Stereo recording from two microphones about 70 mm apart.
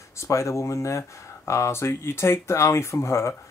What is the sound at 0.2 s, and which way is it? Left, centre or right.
Speech, left.